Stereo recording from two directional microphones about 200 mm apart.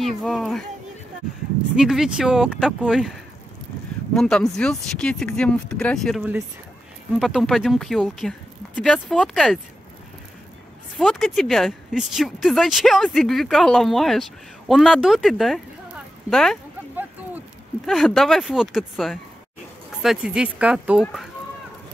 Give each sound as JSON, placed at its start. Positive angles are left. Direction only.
{"t": 0.0, "sound": "speech", "side_deg": 0}
{"t": 1.8, "sound": "speech", "side_deg": 0}
{"t": 4.1, "sound": "speech", "side_deg": 5}
{"t": 11.0, "sound": "speech", "side_deg": 0}
{"t": 17.8, "sound": "speech", "side_deg": 0}